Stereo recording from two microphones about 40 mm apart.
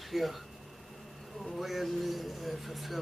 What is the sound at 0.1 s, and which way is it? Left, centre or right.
Speech, centre.